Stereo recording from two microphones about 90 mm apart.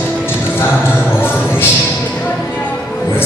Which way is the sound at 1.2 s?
25° left (ahead or behind).